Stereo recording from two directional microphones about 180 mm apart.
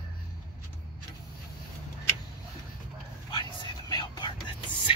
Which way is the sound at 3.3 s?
25° left (ahead or behind).